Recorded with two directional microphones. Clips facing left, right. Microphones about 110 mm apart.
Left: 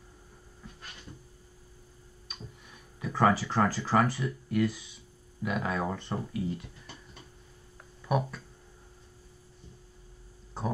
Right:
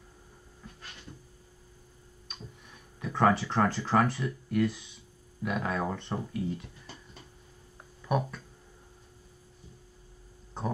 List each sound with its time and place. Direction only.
2.2 s speech: centre (ahead or behind)
8.0 s speech: centre (ahead or behind)
10.6 s a sound: centre (ahead or behind)